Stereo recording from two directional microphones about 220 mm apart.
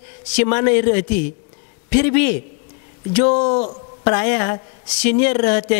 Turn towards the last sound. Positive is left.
turn(degrees=10)  # may be behind; listen again after turning